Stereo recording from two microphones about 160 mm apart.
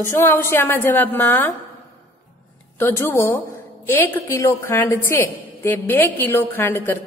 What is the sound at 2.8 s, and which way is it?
A woman's voice, 15° left (ahead or behind).